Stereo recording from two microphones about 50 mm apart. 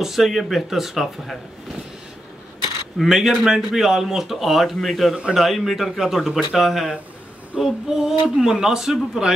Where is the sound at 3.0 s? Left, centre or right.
Centre.